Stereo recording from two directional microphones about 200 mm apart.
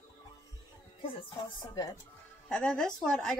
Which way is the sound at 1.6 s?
20° left (ahead or behind).